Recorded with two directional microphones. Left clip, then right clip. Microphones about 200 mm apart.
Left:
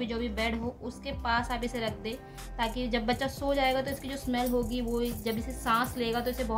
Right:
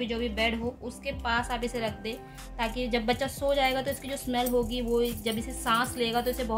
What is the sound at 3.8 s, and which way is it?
Music, 15° right (ahead or behind).